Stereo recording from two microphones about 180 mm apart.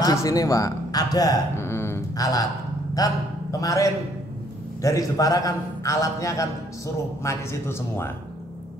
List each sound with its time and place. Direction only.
0.0 s a man's voice: 20° left (ahead or behind)